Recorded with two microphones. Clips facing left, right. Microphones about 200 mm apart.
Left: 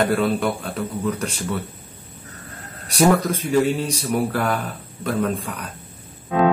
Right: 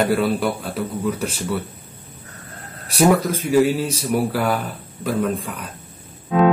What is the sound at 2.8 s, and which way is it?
Speech, centre (ahead or behind).